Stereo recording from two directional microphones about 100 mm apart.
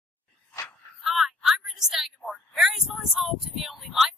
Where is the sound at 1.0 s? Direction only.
5° right (ahead or behind).